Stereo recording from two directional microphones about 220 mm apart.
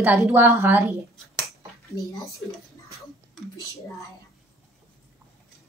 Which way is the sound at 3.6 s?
15° left (ahead or behind).